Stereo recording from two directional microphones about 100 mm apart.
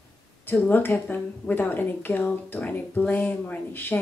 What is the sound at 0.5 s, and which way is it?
A woman's voice, 20° left (ahead or behind).